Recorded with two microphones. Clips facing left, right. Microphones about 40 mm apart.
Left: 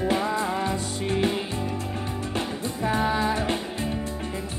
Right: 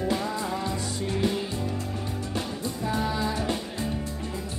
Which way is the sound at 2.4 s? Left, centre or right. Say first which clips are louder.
Left 3 dB; left.